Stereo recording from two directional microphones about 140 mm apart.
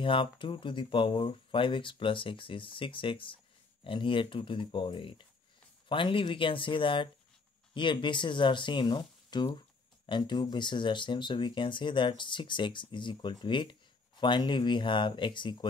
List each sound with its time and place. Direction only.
0.0 s speech: 40° left (ahead or behind)